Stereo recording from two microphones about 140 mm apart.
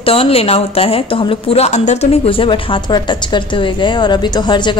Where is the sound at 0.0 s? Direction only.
40° left (ahead or behind).